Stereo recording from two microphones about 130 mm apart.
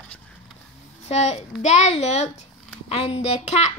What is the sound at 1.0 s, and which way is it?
A woman's voice, 55° left (ahead or behind).